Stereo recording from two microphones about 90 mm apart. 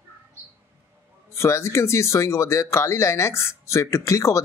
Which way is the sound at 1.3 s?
30° left (ahead or behind).